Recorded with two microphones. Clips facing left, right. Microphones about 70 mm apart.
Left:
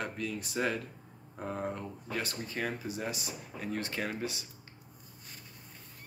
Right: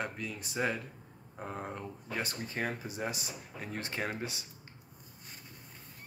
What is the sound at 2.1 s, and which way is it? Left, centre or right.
Speech, right.